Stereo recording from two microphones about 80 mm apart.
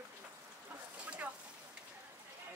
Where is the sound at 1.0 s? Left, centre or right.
Centre.